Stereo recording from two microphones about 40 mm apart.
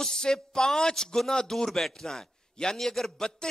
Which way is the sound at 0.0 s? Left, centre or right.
Centre.